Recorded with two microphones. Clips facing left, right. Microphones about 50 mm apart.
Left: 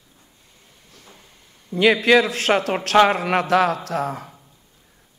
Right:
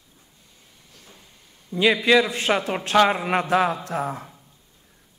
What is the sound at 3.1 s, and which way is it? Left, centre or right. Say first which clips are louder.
Speech: left 2 dB; centre.